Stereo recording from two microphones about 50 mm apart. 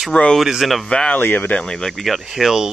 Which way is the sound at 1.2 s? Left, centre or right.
Left.